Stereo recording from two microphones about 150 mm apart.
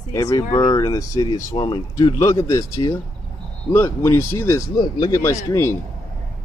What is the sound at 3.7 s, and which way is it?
Speech, 15° left (ahead or behind).